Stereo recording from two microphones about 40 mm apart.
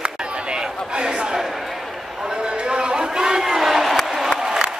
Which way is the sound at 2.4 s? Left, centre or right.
Right.